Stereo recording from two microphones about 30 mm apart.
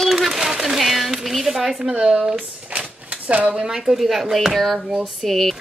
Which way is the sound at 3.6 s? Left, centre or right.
Centre.